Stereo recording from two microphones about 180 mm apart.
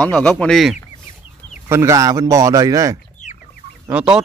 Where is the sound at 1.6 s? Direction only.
15° right (ahead or behind).